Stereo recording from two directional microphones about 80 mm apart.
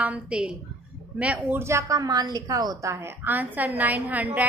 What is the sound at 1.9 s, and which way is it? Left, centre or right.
A woman's voice, right.